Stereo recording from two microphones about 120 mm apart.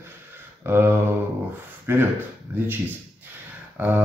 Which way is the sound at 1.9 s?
20° right (ahead or behind).